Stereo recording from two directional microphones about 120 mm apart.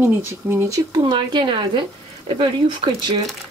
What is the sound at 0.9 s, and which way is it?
Speech, 40° right (ahead or behind).